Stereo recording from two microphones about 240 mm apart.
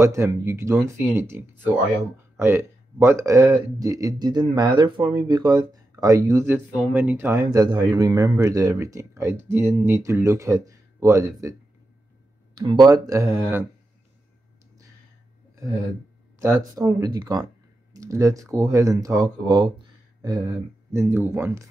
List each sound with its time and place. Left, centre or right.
0.0 s speech: centre
12.5 s speech: centre
16.3 s speech: centre